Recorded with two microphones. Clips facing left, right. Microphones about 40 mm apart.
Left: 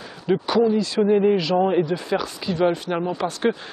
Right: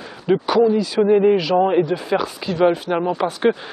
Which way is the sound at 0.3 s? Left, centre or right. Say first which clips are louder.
Right 3 dB; centre.